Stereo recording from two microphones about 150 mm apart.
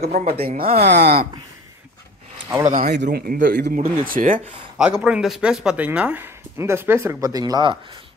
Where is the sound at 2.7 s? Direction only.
55° right (ahead or behind).